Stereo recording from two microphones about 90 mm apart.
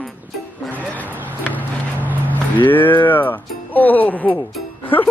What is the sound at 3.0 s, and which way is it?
Music, 20° left (ahead or behind).